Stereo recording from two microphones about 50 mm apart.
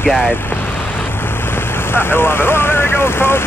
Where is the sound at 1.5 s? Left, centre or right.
Left.